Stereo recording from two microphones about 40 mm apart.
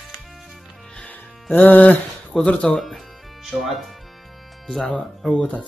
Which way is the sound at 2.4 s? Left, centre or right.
Left.